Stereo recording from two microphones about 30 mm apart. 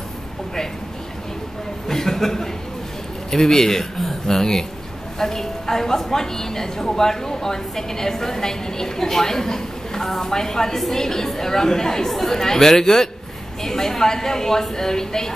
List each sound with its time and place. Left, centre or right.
1.9 s a man's voice: centre